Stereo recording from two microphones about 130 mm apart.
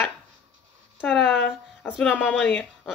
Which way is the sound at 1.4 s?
10° left (ahead or behind).